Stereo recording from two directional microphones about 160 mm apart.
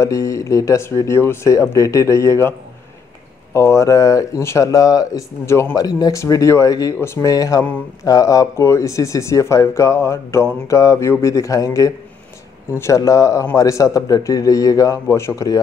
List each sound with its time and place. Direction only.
0.0 s speech: 20° left (ahead or behind)
3.5 s speech: 15° left (ahead or behind)